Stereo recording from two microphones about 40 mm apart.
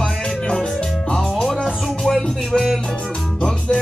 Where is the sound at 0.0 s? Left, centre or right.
Centre.